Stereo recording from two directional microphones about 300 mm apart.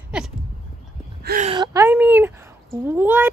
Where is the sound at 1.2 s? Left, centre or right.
Right.